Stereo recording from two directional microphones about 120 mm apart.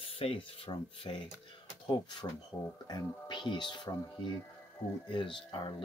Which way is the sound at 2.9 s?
35° left (ahead or behind).